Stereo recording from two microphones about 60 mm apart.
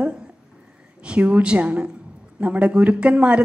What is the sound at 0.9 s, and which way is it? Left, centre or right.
A woman's voice, right.